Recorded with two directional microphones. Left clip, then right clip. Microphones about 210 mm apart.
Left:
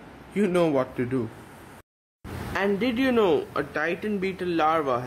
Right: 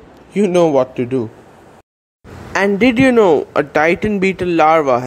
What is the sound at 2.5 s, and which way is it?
Speech, 30° right (ahead or behind).